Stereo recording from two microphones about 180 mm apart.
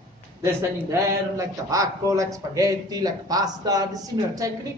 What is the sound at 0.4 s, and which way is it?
A man's voice, 15° right (ahead or behind).